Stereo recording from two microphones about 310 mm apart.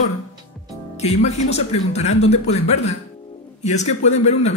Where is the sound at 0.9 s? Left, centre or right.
Left.